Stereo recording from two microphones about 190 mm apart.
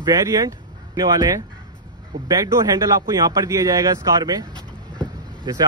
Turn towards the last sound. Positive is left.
turn(degrees=-20)  # may be behind; listen again after turning